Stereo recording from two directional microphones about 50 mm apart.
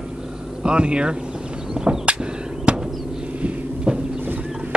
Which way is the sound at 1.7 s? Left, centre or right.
Centre.